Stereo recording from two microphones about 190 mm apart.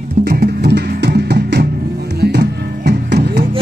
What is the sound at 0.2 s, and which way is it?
Music, 60° right (ahead or behind).